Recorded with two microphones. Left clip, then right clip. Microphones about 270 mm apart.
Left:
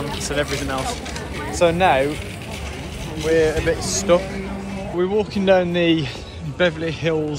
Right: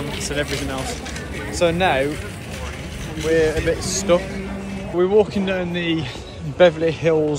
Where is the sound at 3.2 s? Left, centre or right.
Centre.